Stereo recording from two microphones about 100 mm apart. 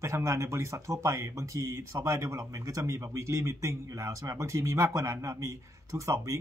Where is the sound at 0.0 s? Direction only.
30° right (ahead or behind).